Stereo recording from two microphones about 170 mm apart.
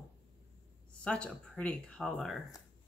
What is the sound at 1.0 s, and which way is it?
Speech, 5° left (ahead or behind).